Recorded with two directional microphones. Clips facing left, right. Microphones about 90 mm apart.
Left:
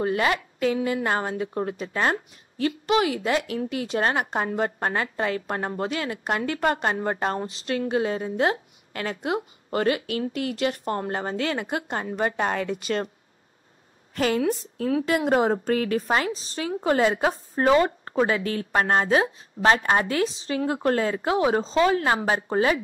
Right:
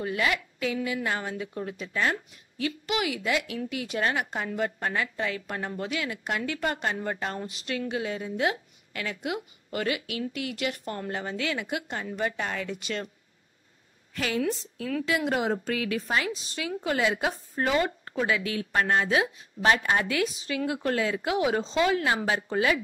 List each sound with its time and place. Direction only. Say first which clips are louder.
0.0 s a woman's voice: left 5 dB; 40° left (ahead or behind)
14.1 s a woman's voice: left 5 dB; 40° left (ahead or behind)